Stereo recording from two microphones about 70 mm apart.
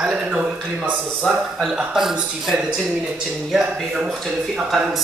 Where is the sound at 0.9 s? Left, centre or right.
Centre.